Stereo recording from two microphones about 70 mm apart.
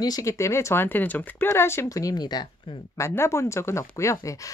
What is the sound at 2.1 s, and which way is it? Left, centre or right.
Speech, left.